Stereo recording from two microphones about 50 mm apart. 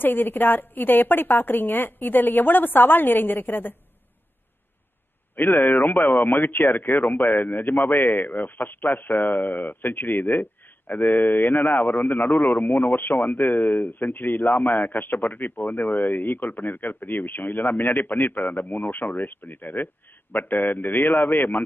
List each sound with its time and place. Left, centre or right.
0.0 s a woman's voice: left
5.3 s a woman's voice: left